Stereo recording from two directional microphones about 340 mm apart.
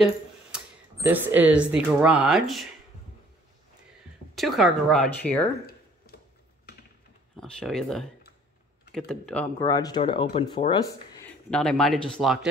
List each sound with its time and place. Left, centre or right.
1.0 s speech: centre
4.4 s speech: centre
5.7 s a sound: left
7.3 s speech: centre